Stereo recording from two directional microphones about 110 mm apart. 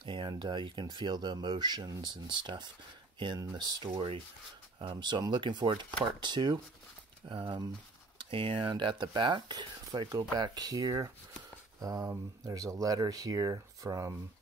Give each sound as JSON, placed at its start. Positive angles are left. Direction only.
{"t": 0.0, "sound": "speech", "side_deg": -45}